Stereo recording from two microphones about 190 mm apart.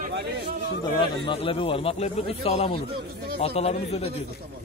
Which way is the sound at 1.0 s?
25° left (ahead or behind).